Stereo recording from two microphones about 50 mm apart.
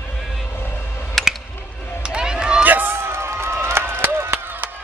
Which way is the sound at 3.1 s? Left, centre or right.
Right.